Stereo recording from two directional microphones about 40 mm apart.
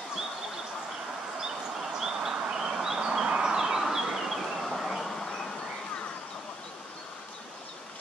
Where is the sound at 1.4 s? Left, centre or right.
Centre.